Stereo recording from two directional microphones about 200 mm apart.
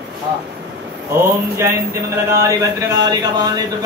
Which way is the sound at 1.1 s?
15° right (ahead or behind).